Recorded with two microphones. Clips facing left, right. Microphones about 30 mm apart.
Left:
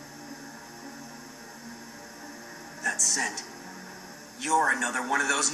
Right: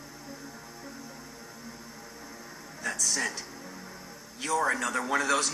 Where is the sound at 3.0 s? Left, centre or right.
Centre.